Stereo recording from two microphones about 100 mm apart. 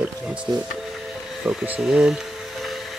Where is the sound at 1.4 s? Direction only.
5° right (ahead or behind).